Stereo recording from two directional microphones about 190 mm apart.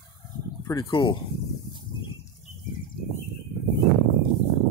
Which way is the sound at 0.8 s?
30° left (ahead or behind).